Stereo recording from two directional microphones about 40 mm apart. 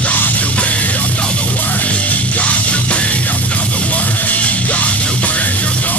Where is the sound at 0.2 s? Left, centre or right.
Left.